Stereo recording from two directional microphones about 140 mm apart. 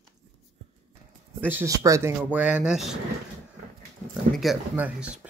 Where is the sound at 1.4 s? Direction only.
15° right (ahead or behind).